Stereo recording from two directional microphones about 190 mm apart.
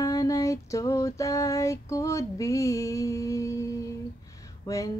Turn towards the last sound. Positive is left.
turn(degrees=15)  # may be behind; listen again after turning